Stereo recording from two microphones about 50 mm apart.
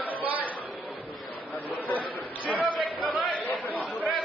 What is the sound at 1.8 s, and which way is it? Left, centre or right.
Chatter, left.